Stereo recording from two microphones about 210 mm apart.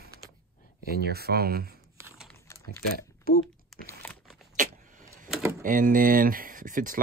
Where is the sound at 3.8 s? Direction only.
10° left (ahead or behind).